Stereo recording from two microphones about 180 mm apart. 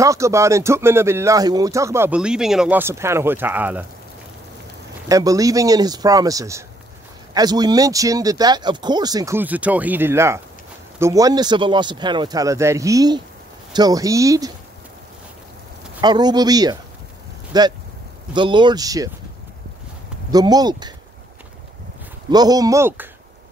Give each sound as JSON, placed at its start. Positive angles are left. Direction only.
{"t": 0.0, "sound": "speech", "side_deg": -15}
{"t": 5.0, "sound": "speech", "side_deg": -20}
{"t": 16.0, "sound": "speech", "side_deg": -25}
{"t": 20.2, "sound": "speech", "side_deg": -20}
{"t": 22.3, "sound": "speech", "side_deg": -20}